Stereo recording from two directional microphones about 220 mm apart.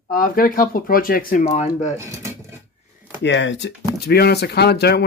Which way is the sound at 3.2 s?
55° left (ahead or behind).